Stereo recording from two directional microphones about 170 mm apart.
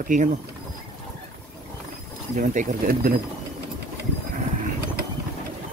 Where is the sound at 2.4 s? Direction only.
50° right (ahead or behind).